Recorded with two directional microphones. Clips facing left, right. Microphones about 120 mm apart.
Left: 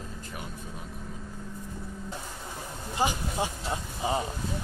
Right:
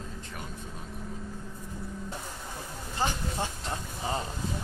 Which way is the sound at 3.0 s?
10° left (ahead or behind).